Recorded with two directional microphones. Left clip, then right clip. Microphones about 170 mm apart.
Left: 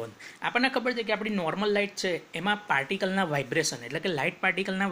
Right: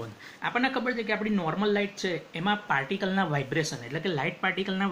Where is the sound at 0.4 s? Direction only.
35° left (ahead or behind).